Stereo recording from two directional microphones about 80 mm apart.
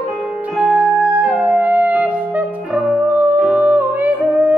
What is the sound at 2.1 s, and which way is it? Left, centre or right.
Music, centre.